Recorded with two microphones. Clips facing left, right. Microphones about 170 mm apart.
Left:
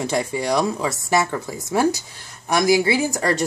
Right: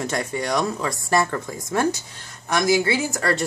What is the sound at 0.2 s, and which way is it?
A woman's voice, 5° left (ahead or behind).